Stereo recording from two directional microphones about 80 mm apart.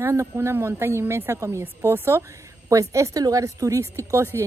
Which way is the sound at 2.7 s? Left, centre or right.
Right.